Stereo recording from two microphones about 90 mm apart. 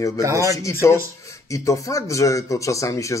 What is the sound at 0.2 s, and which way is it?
Speech, 35° right (ahead or behind).